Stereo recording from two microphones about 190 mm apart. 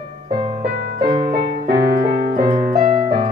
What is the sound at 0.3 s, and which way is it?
Music, 30° right (ahead or behind).